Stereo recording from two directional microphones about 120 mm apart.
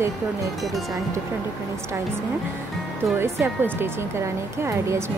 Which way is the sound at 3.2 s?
20° right (ahead or behind).